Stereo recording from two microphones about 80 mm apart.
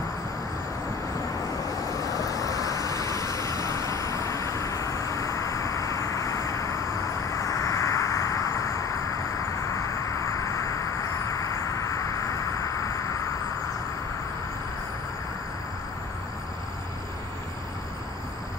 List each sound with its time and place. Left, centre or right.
1.7 s vehicle: left